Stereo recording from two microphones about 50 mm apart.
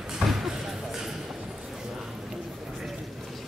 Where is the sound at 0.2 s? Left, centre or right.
Centre.